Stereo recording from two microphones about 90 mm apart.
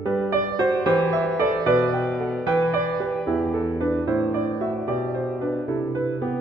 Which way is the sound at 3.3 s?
Centre (ahead or behind).